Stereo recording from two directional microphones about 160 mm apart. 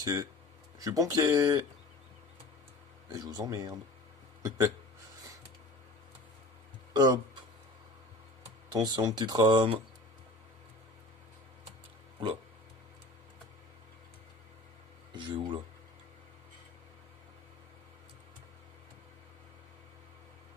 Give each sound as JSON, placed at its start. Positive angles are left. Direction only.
{"t": 0.0, "sound": "speech", "side_deg": -20}
{"t": 3.1, "sound": "speech", "side_deg": -25}
{"t": 6.9, "sound": "a sound", "side_deg": -25}
{"t": 8.7, "sound": "speech", "side_deg": -25}
{"t": 15.1, "sound": "speech", "side_deg": -30}